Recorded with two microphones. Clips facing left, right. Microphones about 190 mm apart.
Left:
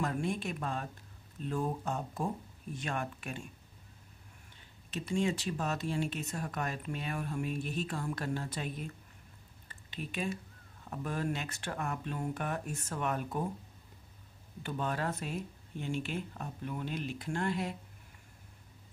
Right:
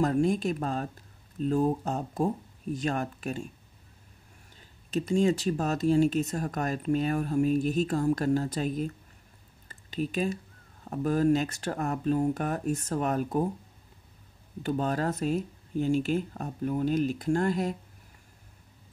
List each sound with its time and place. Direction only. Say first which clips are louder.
0.0 s speech: right 9 dB; 40° right (ahead or behind)
4.9 s speech: right 8 dB; 40° right (ahead or behind)
14.6 s speech: right 7 dB; 40° right (ahead or behind)